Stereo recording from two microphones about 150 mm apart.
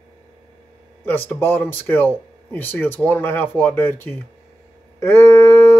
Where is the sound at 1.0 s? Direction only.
15° left (ahead or behind).